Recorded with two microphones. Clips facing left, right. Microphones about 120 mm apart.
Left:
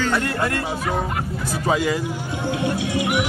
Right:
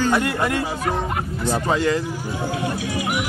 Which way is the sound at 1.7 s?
10° left (ahead or behind).